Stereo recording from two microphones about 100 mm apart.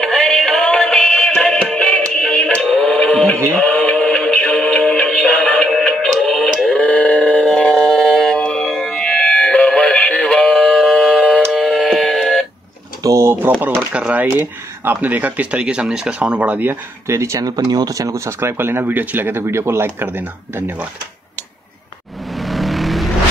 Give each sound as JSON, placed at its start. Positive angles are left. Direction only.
{"t": 0.0, "sound": "music", "side_deg": 0}
{"t": 13.0, "sound": "pigeon", "side_deg": -30}
{"t": 13.5, "sound": "speech", "side_deg": -15}
{"t": 22.3, "sound": "vehicle", "side_deg": 0}